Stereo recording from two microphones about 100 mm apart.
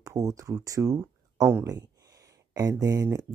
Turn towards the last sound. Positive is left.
turn(degrees=-30)  # may be behind; listen again after turning